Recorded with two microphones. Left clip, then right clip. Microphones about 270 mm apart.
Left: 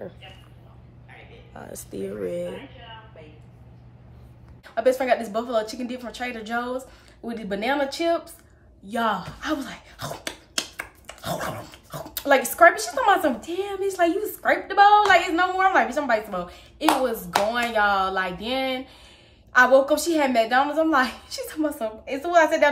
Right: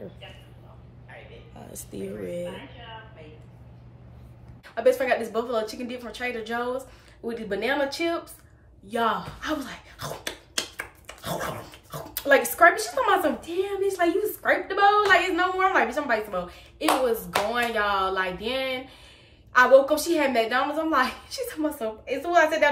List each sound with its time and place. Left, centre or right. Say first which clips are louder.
1.9 s speech: left 4 dB; centre
4.7 s a woman's voice: left 1 dB; centre